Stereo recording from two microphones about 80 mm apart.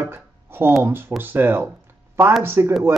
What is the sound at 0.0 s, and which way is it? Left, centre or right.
Music, right.